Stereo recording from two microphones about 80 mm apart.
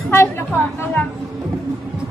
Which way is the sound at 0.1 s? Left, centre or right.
Left.